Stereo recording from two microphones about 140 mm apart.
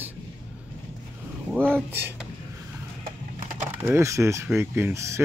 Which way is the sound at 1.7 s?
15° right (ahead or behind).